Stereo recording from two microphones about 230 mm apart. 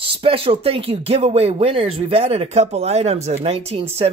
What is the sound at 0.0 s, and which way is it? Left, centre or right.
Speech, right.